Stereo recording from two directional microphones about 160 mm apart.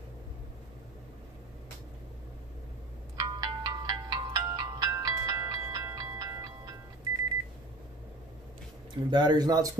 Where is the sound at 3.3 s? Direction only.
25° right (ahead or behind).